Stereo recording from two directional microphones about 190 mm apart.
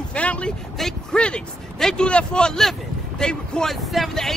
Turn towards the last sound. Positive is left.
turn(degrees=0)  # may be behind; listen again after turning